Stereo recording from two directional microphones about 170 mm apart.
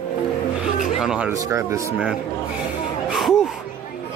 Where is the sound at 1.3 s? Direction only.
20° right (ahead or behind).